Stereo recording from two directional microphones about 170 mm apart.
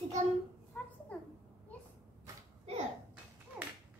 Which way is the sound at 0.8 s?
10° left (ahead or behind).